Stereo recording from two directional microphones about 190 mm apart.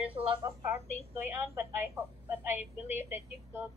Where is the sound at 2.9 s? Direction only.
10° right (ahead or behind).